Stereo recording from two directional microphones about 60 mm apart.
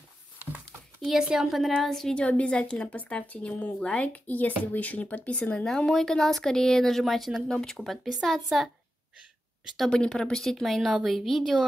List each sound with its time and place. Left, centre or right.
1.0 s a woman's voice: centre
2.1 s speech: left
5.7 s a woman's voice: centre
9.8 s a woman's voice: centre